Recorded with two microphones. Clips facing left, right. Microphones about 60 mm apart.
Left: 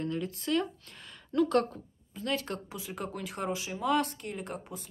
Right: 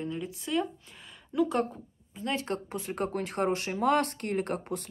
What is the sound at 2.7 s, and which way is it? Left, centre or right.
Speech, right.